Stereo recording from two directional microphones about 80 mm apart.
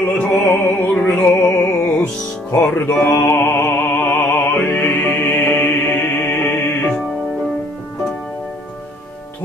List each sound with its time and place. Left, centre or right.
0.0 s music: centre
2.7 s music: left